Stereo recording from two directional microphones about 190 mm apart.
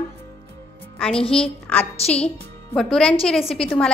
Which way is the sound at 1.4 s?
5° left (ahead or behind).